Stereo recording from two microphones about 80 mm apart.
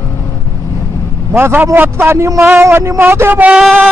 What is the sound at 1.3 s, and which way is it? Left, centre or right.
A man's voice, right.